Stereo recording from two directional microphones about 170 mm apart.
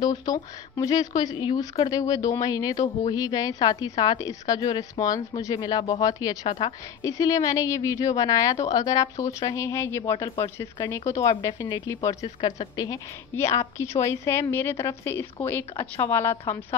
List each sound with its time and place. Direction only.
0.0 s a woman's voice: 25° left (ahead or behind)
12.4 s a woman's voice: 35° left (ahead or behind)
12.7 s a woman's voice: 20° left (ahead or behind)